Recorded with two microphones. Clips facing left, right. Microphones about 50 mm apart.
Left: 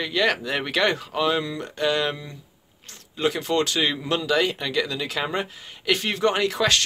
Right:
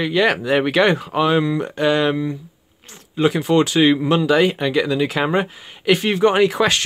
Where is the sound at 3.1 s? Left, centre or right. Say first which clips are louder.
Right 7 dB; centre.